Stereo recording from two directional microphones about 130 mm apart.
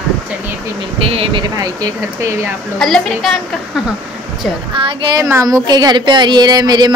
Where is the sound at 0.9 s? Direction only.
45° right (ahead or behind).